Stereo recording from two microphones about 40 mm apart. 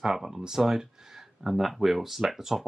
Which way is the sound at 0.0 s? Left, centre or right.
Centre.